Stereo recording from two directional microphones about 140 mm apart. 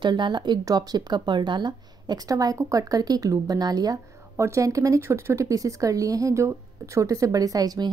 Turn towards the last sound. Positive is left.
turn(degrees=-25)  # may be behind; listen again after turning